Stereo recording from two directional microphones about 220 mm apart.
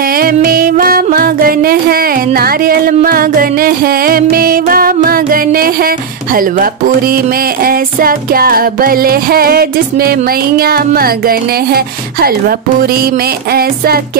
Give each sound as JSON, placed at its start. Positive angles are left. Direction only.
{"t": 0.0, "sound": "music", "side_deg": -40}